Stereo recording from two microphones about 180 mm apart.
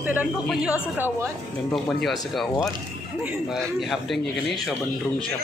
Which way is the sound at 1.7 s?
Centre (ahead or behind).